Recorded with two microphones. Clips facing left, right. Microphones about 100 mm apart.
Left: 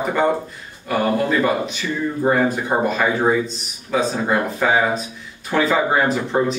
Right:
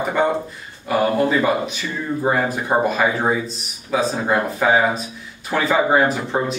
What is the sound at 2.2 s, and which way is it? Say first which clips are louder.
Speech: left 2 dB; 5° right (ahead or behind).